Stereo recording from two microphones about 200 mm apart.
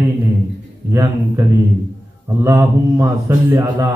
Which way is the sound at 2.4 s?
15° right (ahead or behind).